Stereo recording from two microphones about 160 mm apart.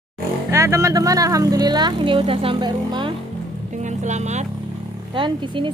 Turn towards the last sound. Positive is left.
turn(degrees=-30)  # may be behind; listen again after turning